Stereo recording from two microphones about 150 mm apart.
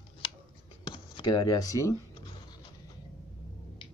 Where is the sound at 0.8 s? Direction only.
30° left (ahead or behind).